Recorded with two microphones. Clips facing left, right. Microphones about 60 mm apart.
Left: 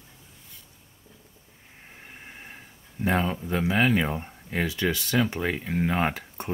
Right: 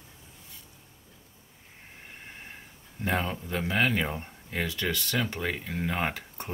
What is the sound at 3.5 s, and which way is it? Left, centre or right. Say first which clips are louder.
Speech: left 4 dB; centre.